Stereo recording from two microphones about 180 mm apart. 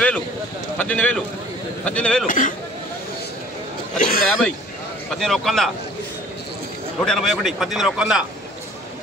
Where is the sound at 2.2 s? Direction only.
45° left (ahead or behind).